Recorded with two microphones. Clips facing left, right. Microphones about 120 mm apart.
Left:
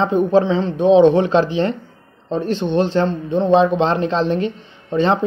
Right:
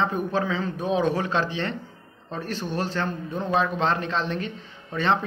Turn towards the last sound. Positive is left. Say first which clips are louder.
# left 7 dB
turn(degrees=30)  # may be behind; listen again after turning